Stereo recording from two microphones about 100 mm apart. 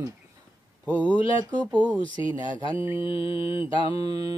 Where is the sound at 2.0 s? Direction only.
55° left (ahead or behind).